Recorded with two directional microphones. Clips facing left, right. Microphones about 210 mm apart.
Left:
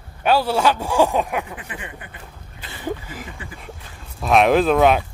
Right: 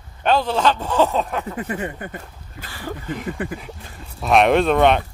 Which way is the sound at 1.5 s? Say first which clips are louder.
Right 9 dB; 40° right (ahead or behind).